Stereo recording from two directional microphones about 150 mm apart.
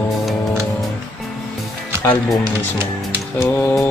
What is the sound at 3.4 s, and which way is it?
Speech, 15° left (ahead or behind).